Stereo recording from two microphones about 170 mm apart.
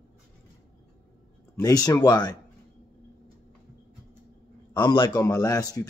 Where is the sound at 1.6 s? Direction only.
20° left (ahead or behind).